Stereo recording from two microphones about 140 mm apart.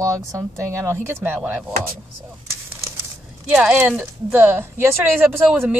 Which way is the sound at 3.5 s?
5° right (ahead or behind).